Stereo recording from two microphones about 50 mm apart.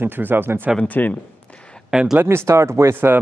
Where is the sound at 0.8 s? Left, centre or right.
Left.